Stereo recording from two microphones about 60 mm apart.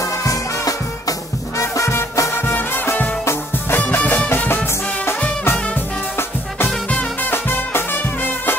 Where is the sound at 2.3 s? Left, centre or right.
Left.